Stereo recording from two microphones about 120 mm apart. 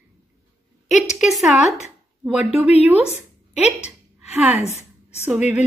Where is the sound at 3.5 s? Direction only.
10° right (ahead or behind).